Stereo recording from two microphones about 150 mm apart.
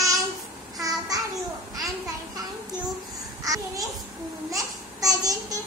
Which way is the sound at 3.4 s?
25° right (ahead or behind).